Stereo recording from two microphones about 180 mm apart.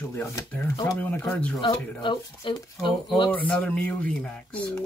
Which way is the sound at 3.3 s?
5° left (ahead or behind).